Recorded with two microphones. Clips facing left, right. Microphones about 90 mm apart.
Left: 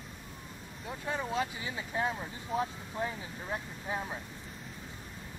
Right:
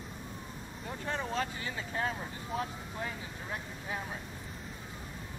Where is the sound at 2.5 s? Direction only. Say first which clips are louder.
Left 4 dB; 25° left (ahead or behind).